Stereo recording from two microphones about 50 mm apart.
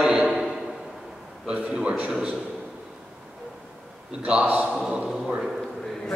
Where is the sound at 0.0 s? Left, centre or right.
Centre.